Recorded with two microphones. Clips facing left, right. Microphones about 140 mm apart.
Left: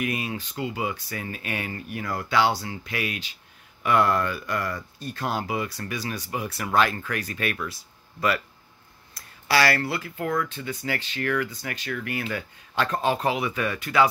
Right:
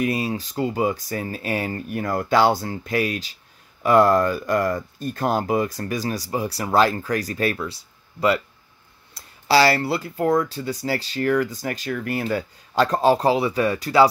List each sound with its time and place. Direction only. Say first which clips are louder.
0.0 s speech: right 6 dB; 35° right (ahead or behind)